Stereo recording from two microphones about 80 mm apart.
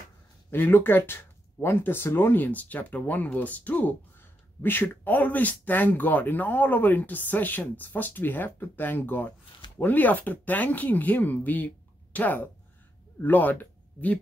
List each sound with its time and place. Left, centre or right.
0.5 s speech: left